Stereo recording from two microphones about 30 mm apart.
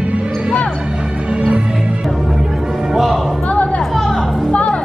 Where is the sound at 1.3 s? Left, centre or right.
Right.